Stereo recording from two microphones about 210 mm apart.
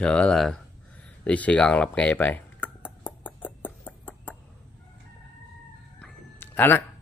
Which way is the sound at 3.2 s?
10° left (ahead or behind).